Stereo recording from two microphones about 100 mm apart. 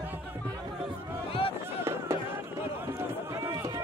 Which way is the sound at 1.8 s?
25° right (ahead or behind).